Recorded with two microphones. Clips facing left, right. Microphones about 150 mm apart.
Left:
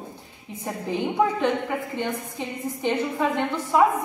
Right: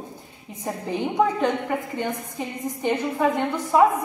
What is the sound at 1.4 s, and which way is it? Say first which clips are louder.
Speech: right 1 dB; 10° right (ahead or behind).